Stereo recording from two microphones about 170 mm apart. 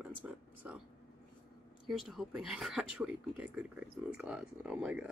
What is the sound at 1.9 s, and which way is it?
Speech, centre (ahead or behind).